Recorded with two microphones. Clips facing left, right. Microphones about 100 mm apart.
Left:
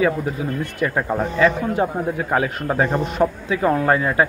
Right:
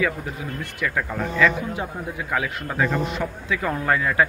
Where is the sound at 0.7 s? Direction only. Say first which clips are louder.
Left 4 dB; 30° left (ahead or behind).